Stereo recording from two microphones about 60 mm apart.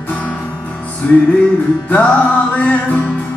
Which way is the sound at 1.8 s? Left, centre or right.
Left.